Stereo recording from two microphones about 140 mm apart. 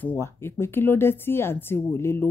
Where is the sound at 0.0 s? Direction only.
15° left (ahead or behind).